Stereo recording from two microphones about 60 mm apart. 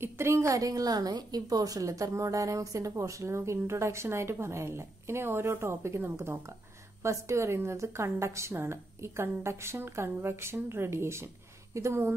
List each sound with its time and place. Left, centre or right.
0.0 s a woman's voice: right
7.0 s a woman's voice: right